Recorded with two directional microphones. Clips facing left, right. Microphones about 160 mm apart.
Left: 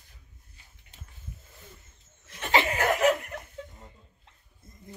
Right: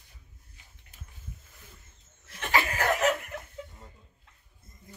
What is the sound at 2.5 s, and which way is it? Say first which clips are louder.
Snicker: left 3 dB; 25° left (ahead or behind).